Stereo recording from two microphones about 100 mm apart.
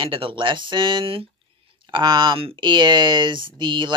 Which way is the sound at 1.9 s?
50° right (ahead or behind).